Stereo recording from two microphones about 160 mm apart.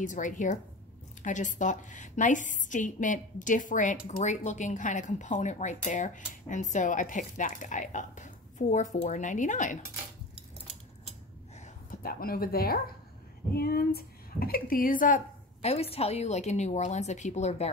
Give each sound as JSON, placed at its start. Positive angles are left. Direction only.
{"t": 0.0, "sound": "speech", "side_deg": 50}
{"t": 11.6, "sound": "a woman's voice", "side_deg": 65}
{"t": 15.7, "sound": "speech", "side_deg": 40}